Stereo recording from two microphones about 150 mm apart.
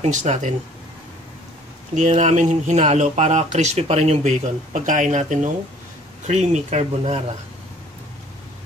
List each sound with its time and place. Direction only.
0.0 s speech: 50° right (ahead or behind)
2.0 s speech: 50° right (ahead or behind)